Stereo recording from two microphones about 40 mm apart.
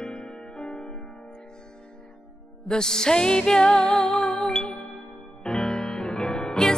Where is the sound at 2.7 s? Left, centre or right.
Centre.